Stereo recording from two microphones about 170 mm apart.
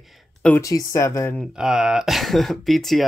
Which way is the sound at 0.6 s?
20° left (ahead or behind).